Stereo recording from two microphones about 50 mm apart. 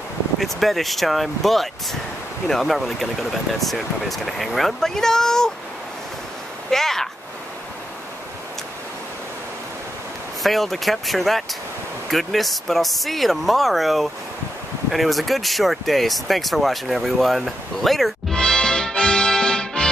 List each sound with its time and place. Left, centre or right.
0.4 s speech: centre
6.7 s speech: centre
10.4 s speech: centre
18.3 s music: centre